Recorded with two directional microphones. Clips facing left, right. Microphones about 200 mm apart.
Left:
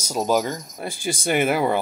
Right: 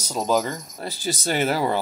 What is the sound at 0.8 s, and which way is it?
Speech, 50° left (ahead or behind).